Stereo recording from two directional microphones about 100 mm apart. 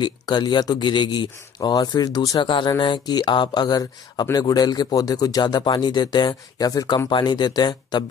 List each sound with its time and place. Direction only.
0.0 s speech: 50° left (ahead or behind)
2.4 s speech: 55° left (ahead or behind)